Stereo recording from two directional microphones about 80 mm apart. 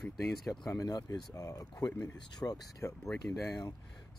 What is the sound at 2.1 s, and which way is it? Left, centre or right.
Speech, left.